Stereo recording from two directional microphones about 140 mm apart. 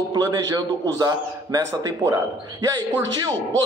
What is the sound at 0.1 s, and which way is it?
A man's voice, 30° right (ahead or behind).